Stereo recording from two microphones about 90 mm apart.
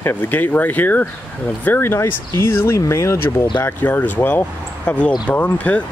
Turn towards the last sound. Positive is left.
turn(degrees=15)  # may be behind; listen again after turning